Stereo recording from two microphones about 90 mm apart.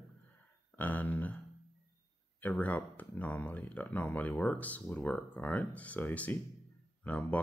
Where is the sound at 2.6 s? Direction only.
20° left (ahead or behind).